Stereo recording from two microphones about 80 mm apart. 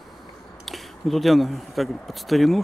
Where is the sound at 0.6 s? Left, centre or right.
Centre.